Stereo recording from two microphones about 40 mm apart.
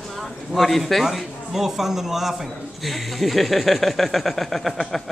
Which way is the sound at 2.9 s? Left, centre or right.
Centre.